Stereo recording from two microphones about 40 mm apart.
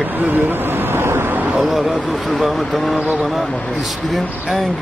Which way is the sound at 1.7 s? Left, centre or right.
Centre.